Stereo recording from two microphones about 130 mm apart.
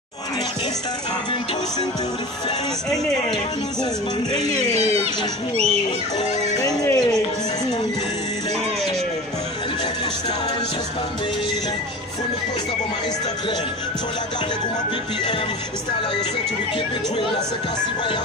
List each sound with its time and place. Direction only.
6.1 s speech: 30° left (ahead or behind)